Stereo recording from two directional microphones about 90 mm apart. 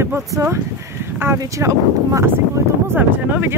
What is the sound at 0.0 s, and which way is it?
Speech, 30° right (ahead or behind).